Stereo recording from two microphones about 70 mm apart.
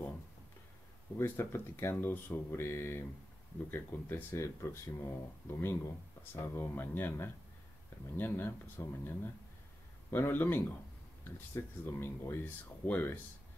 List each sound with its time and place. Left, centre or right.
1.1 s speech: left